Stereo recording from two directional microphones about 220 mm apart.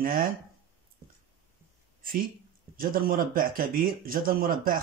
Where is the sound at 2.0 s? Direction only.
40° right (ahead or behind).